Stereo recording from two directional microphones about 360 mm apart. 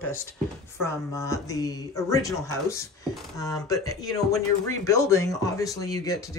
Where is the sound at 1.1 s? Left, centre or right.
Centre.